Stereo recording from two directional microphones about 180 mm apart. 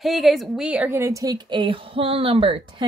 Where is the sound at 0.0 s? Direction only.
Centre (ahead or behind).